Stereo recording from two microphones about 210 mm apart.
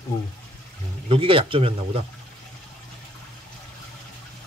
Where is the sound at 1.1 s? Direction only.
25° right (ahead or behind).